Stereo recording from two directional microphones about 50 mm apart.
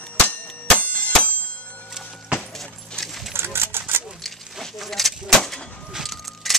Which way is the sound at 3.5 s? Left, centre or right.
Right.